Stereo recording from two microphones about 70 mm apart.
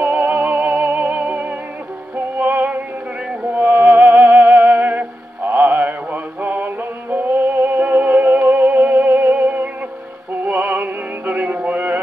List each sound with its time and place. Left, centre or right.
0.0 s music: right